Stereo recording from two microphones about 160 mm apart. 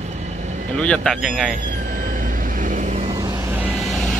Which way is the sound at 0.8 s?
5° left (ahead or behind).